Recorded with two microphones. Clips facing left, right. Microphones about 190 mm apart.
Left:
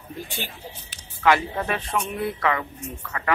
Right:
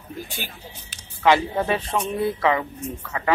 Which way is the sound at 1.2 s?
25° right (ahead or behind).